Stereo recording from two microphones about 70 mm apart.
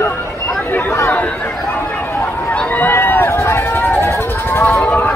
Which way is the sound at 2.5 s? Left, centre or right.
Left.